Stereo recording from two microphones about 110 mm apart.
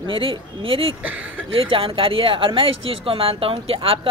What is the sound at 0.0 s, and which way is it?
Speech, 50° right (ahead or behind).